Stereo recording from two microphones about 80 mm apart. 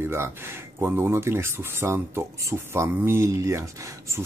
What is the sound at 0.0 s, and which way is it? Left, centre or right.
Speech, right.